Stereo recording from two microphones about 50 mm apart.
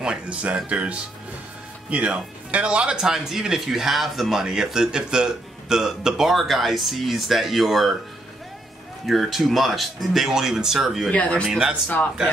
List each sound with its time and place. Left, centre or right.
0.0 s speech: right; by 7.9 s centre
9.0 s speech: centre
11.1 s speech: left